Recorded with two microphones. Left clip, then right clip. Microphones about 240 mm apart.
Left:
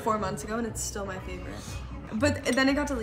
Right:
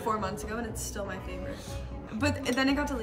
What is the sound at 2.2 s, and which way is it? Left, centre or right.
Speech, centre.